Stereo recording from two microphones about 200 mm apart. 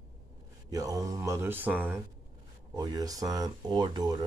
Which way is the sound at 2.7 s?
20° right (ahead or behind).